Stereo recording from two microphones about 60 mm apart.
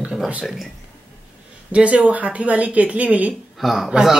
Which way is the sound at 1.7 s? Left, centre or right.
Right.